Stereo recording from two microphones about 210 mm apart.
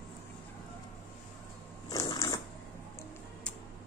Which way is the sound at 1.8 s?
15° left (ahead or behind).